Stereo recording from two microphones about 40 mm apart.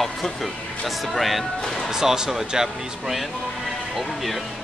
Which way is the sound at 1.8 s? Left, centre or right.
Centre.